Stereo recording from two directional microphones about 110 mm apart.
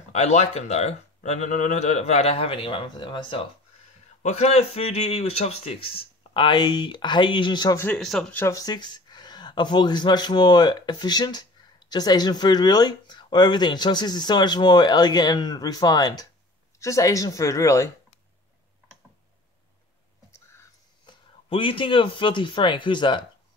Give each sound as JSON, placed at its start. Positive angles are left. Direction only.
{"t": 0.1, "sound": "speech", "side_deg": 90}
{"t": 4.2, "sound": "speech", "side_deg": 85}
{"t": 7.7, "sound": "speech", "side_deg": 20}
{"t": 8.0, "sound": "speech", "side_deg": 0}
{"t": 8.5, "sound": "speech", "side_deg": 35}
{"t": 21.0, "sound": "speech", "side_deg": 55}